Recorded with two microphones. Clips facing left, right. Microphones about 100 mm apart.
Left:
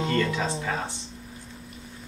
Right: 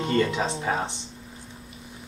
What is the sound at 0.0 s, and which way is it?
Speech, 20° right (ahead or behind).